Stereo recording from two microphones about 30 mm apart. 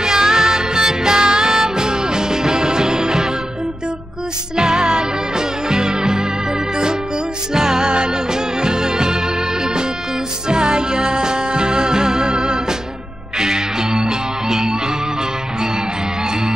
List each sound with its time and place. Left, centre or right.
0.0 s music: right
4.6 s music: right
7.5 s music: centre
10.5 s music: right